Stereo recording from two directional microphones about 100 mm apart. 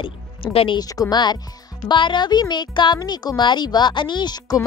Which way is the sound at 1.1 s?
45° left (ahead or behind).